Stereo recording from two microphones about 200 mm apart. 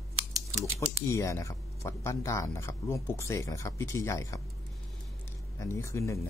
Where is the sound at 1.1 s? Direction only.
15° left (ahead or behind).